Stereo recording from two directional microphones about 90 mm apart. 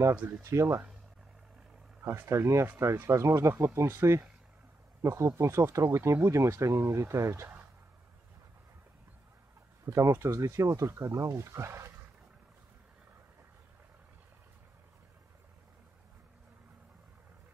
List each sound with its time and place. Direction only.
0.1 s speech: 20° right (ahead or behind)
0.5 s speech: 30° right (ahead or behind)
2.0 s speech: 30° right (ahead or behind)
9.8 s speech: 35° right (ahead or behind)